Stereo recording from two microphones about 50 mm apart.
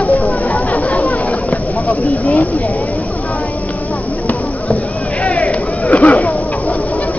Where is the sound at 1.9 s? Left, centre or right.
Left.